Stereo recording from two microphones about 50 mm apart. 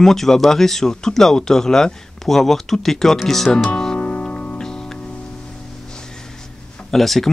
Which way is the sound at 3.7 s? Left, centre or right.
Centre.